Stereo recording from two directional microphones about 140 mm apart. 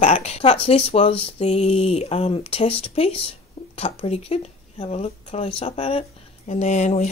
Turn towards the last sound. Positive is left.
turn(degrees=60)  # may be behind; listen again after turning